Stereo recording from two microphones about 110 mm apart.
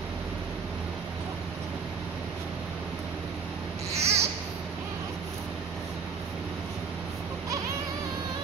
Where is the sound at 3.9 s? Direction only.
75° right (ahead or behind).